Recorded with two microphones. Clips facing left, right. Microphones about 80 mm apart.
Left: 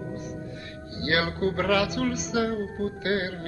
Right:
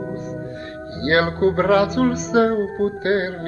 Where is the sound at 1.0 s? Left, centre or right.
Right.